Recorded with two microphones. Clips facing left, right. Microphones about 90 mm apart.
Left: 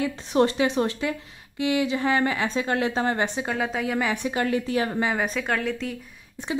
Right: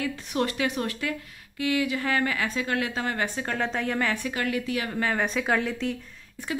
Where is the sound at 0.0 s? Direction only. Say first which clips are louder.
Left 6 dB; 30° left (ahead or behind).